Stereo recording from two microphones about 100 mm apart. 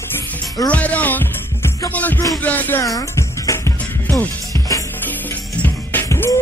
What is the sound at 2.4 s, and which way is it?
Speech, 15° left (ahead or behind).